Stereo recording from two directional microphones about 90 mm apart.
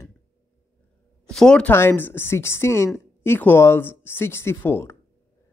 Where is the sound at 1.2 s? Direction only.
10° left (ahead or behind).